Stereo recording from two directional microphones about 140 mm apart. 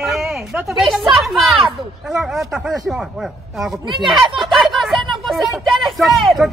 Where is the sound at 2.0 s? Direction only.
5° right (ahead or behind).